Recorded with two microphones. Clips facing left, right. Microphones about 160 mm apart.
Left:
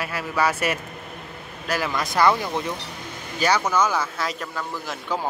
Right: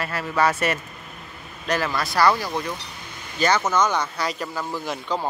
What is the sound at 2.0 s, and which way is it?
Speech, 20° left (ahead or behind).